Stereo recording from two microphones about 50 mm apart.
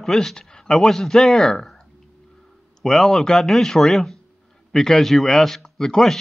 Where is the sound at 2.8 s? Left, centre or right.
Centre.